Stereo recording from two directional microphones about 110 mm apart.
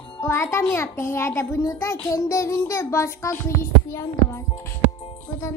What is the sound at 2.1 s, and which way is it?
Music, 30° left (ahead or behind).